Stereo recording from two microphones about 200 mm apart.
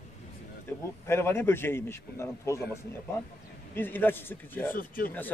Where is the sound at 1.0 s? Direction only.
10° left (ahead or behind).